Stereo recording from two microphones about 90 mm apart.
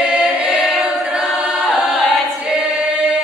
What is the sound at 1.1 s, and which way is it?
Choir, 5° right (ahead or behind).